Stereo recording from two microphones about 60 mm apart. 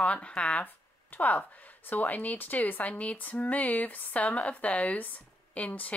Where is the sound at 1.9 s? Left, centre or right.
Left.